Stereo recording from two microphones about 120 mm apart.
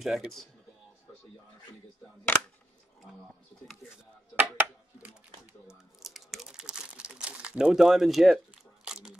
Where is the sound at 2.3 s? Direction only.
15° left (ahead or behind).